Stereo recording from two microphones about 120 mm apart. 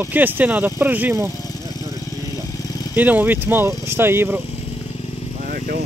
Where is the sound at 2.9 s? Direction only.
15° right (ahead or behind).